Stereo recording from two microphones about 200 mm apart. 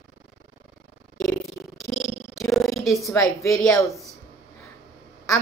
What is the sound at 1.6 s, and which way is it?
Purr, 5° left (ahead or behind).